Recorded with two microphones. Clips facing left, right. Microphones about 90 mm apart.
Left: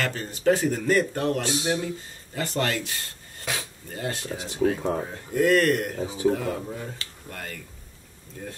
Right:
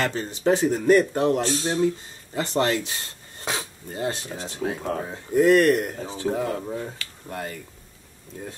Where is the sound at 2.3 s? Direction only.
20° right (ahead or behind).